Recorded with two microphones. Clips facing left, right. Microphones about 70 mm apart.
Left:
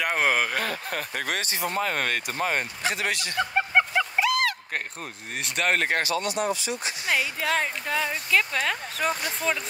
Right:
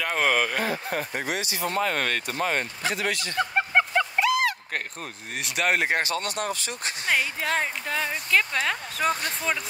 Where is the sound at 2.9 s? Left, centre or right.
Left.